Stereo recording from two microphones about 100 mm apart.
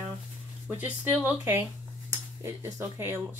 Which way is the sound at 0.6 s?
15° right (ahead or behind).